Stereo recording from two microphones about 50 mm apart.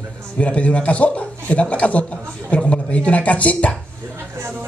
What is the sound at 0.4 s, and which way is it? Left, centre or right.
Speech, left.